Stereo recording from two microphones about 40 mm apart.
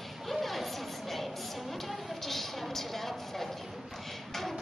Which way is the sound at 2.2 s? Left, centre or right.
Centre.